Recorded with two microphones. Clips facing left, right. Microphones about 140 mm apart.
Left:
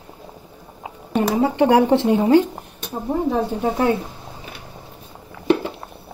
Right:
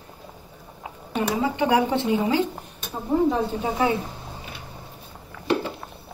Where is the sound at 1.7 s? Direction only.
65° left (ahead or behind).